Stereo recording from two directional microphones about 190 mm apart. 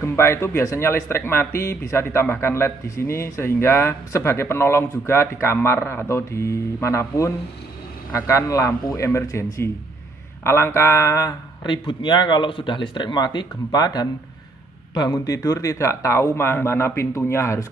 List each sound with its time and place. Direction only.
0.0 s a man's voice: 15° left (ahead or behind)